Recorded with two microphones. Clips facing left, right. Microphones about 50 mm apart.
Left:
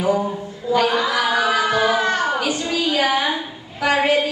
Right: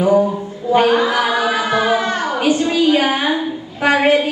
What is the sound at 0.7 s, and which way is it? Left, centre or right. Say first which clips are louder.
Chant: right 5 dB; right.